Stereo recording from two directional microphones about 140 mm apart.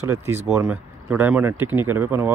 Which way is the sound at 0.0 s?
15° right (ahead or behind).